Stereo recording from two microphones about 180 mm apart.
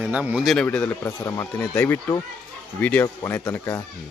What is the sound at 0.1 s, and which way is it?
Speech, 5° right (ahead or behind).